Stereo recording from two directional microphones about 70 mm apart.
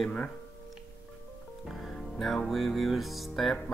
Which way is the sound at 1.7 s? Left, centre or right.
Centre.